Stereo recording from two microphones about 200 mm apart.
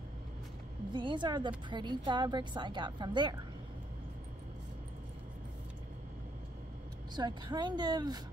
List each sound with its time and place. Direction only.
0.9 s a woman's voice: 25° right (ahead or behind)
7.2 s a woman's voice: 20° right (ahead or behind)